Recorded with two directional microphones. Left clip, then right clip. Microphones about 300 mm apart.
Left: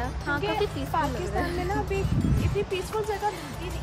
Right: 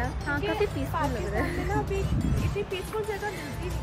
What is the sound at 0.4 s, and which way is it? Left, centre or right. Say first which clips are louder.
Speech: right 1 dB; left.